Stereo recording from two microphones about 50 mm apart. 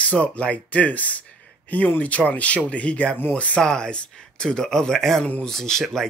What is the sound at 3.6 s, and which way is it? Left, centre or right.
Speech, centre.